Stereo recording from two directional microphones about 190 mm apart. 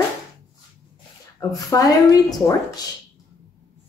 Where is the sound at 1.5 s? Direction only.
20° left (ahead or behind).